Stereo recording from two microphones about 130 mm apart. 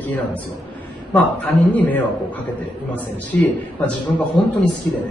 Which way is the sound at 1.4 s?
10° left (ahead or behind).